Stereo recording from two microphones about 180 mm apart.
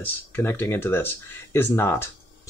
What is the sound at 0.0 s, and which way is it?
Speech, 10° left (ahead or behind).